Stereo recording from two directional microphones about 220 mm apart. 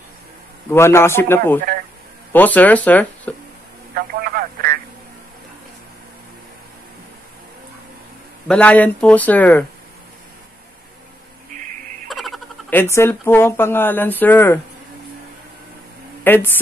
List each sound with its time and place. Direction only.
0.7 s speech: 10° left (ahead or behind)
3.9 s telephone: 40° right (ahead or behind)
8.5 s speech: 5° left (ahead or behind)
11.5 s a sound: 35° right (ahead or behind)
12.1 s speech: centre (ahead or behind)
16.3 s speech: 10° left (ahead or behind)